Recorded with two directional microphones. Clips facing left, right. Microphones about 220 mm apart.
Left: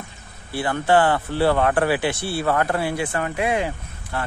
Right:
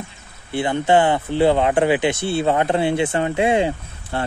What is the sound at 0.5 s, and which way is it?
Speech, 20° right (ahead or behind).